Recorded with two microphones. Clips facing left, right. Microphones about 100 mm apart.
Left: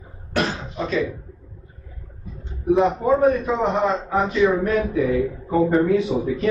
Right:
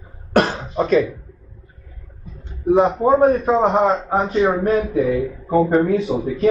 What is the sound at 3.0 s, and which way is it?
A man's voice, 35° right (ahead or behind).